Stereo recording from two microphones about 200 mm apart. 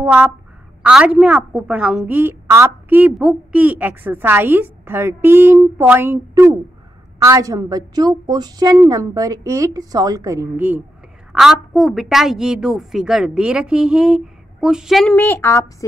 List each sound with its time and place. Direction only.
0.0 s a woman's voice: 10° right (ahead or behind)
15.1 s a woman's voice: 15° left (ahead or behind)